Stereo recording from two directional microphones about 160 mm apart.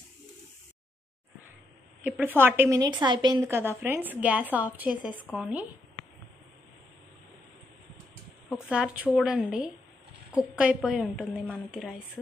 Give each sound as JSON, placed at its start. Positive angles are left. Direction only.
{"t": 2.0, "sound": "a woman's voice", "side_deg": -10}
{"t": 3.4, "sound": "a woman's voice", "side_deg": -15}
{"t": 8.6, "sound": "a woman's voice", "side_deg": -5}